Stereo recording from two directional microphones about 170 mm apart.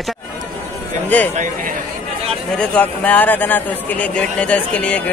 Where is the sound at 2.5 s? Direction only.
5° left (ahead or behind).